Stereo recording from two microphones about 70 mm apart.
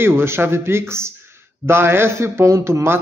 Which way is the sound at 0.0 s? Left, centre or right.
Right.